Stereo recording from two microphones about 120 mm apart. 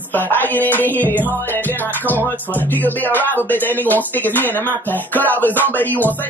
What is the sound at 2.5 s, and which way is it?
Speech, 15° left (ahead or behind).